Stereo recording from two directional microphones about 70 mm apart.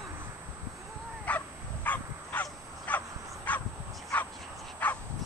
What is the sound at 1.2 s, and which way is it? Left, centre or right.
Dog, left.